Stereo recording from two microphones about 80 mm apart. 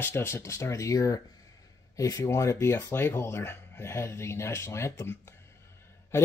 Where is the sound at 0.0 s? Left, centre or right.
Left.